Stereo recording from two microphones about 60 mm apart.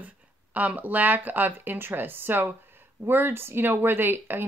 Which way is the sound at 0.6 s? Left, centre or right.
Right.